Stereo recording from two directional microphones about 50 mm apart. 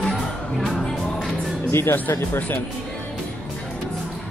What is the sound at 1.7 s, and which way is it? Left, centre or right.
Speech, left.